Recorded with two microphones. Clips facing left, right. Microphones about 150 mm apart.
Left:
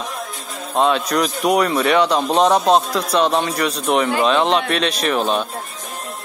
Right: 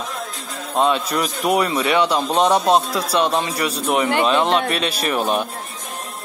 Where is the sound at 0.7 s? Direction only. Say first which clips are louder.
Left 2 dB; centre (ahead or behind).